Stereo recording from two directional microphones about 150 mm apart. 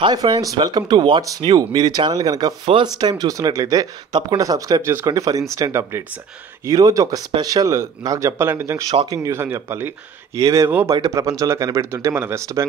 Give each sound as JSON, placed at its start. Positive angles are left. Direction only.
{"t": 0.0, "sound": "speech", "side_deg": -25}